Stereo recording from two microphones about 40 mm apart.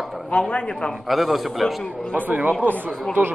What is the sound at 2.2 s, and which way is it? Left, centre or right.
Speech, right.